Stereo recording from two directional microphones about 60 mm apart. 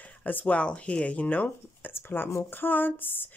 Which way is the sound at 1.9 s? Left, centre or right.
Left.